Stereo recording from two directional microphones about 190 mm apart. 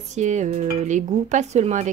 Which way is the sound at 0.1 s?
40° right (ahead or behind).